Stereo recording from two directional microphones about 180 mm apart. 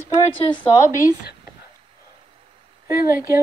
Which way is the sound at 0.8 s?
15° left (ahead or behind).